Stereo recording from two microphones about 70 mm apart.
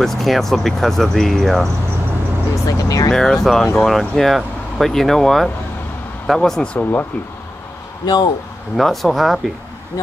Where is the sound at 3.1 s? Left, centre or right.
Centre.